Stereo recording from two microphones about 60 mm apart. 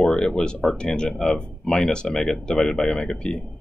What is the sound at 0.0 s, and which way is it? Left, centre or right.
Speech, centre.